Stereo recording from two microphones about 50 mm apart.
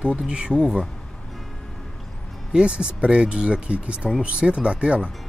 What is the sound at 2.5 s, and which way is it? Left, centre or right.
Speech, right.